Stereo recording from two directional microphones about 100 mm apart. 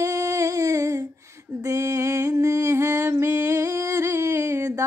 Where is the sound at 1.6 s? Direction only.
30° right (ahead or behind).